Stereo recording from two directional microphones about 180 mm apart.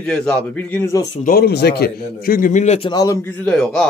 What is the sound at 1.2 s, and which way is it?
A man's voice, 60° left (ahead or behind).